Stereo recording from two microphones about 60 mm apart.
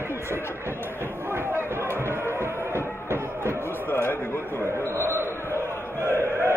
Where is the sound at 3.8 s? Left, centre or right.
Left.